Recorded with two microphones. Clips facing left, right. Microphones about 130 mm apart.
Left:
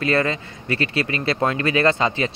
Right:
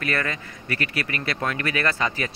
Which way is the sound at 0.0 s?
25° left (ahead or behind).